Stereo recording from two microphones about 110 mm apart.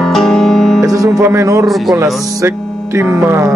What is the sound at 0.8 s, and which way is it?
Speech, 30° right (ahead or behind).